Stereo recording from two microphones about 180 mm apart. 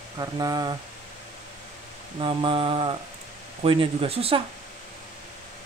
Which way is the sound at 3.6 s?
30° right (ahead or behind).